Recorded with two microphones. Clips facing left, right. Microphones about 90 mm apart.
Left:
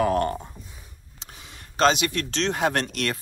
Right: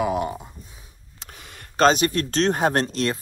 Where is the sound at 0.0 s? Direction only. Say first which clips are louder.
Left 1 dB; 10° right (ahead or behind).